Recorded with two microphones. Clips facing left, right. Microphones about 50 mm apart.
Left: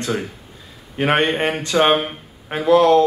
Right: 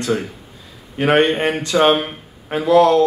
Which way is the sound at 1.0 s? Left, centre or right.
Left.